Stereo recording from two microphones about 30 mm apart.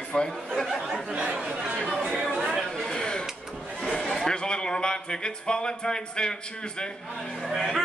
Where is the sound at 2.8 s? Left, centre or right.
Left.